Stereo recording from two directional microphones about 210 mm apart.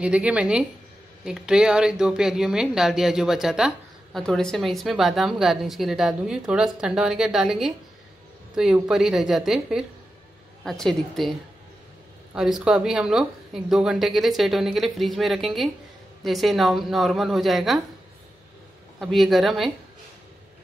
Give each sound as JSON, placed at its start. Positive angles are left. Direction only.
{"t": 0.0, "sound": "speech", "side_deg": -5}
{"t": 12.4, "sound": "speech", "side_deg": 0}
{"t": 18.9, "sound": "speech", "side_deg": 0}